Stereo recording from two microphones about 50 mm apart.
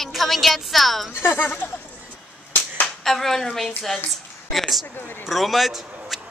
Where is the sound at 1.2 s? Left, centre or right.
Left.